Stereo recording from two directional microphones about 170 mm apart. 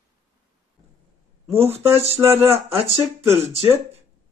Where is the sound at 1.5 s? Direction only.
35° right (ahead or behind).